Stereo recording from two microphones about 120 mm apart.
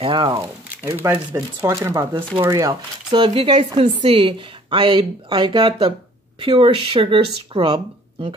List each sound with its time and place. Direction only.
0.0 s a woman's voice: 45° right (ahead or behind)
0.3 s speech: 30° right (ahead or behind)
0.9 s speech: 15° right (ahead or behind)
1.3 s a woman's voice: 25° right (ahead or behind); by 8.4 s 45° right (ahead or behind)